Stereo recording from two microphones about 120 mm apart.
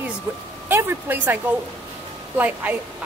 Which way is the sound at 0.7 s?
20° right (ahead or behind).